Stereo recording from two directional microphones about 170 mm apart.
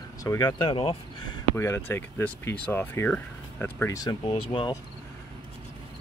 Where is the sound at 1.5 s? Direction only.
15° left (ahead or behind).